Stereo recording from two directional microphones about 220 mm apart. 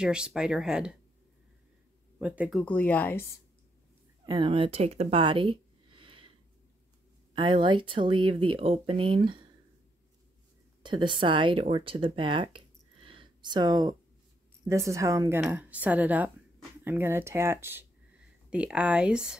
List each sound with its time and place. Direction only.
0.0 s speech: 5° right (ahead or behind)
2.1 s a woman's voice: 5° right (ahead or behind)
2.6 s speech: 5° left (ahead or behind)
4.3 s speech: 25° right (ahead or behind)
7.3 s speech: 20° right (ahead or behind)
10.8 s a woman's voice: 20° right (ahead or behind); by 19.3 s 5° right (ahead or behind)